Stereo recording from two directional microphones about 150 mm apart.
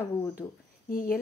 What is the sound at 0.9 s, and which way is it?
Speech, 70° left (ahead or behind).